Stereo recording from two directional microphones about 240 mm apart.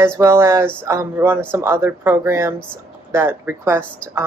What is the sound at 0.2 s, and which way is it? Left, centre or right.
A woman's voice, centre.